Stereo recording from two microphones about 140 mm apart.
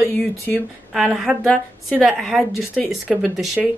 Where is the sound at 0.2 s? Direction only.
5° left (ahead or behind).